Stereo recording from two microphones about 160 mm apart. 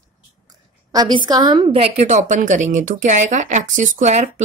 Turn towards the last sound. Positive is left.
turn(degrees=-45)  # may be behind; listen again after turning